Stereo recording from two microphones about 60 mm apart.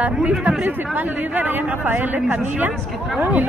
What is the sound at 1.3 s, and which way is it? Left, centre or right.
Speech, right.